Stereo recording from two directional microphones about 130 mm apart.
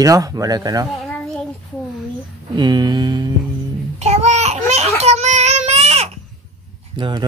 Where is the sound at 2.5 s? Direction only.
35° right (ahead or behind).